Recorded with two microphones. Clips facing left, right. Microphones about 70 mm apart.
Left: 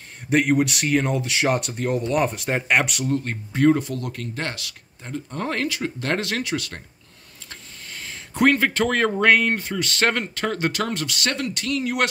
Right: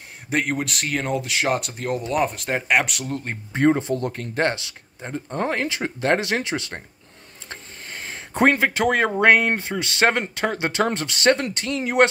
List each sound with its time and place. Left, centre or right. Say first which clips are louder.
0.3 s speech: left 5 dB; centre
3.3 s speech: even; right
7.4 s a sound: right 3 dB; right
8.5 s speech: right 1 dB; centre; by 12.1 s right